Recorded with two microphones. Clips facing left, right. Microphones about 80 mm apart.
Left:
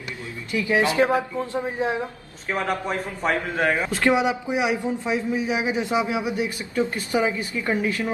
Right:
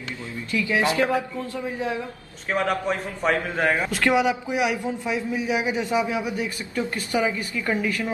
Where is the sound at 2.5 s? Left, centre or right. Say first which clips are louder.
Right 2 dB; centre.